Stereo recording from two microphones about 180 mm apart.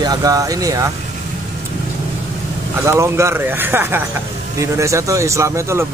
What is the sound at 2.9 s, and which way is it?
Speech, 15° right (ahead or behind).